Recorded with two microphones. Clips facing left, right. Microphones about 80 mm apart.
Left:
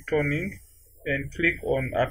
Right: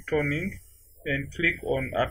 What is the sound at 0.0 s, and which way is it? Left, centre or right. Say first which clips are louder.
Speech: left 1 dB; centre.